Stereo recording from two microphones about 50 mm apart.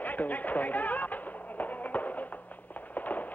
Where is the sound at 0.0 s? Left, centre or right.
Left.